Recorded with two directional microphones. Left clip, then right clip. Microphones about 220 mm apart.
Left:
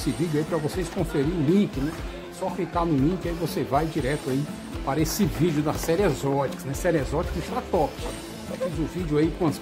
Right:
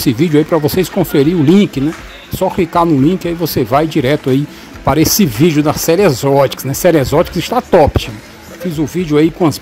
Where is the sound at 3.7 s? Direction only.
45° right (ahead or behind).